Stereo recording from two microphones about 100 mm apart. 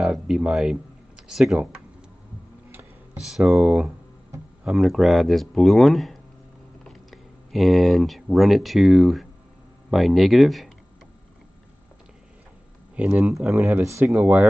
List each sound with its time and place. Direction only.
0.0 s speech: 5° right (ahead or behind)
3.2 s speech: 5° right (ahead or behind)
12.9 s speech: 10° right (ahead or behind)